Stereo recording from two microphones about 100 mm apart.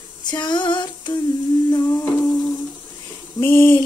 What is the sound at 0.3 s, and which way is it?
Female singing, 50° left (ahead or behind).